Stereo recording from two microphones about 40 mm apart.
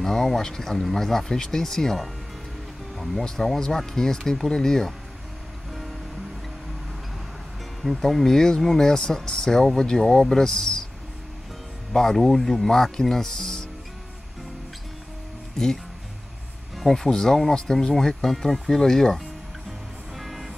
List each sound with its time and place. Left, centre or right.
0.0 s speech: centre
3.0 s speech: centre
3.4 s speech: centre
8.1 s speech: centre
11.9 s speech: centre
15.5 s speech: centre
20.2 s vehicle: centre